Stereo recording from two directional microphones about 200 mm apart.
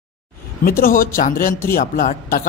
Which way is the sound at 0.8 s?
45° left (ahead or behind).